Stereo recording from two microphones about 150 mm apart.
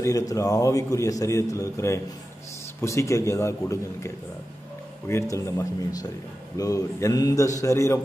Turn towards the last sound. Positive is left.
turn(degrees=20)  # may be behind; listen again after turning